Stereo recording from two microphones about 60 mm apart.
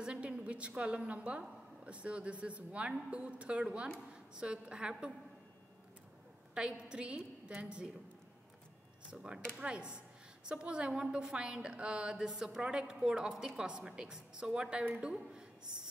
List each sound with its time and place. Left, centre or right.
0.0 s a sound: centre
1.9 s a woman's voice: right
6.5 s a woman's voice: centre
9.1 s a woman's voice: centre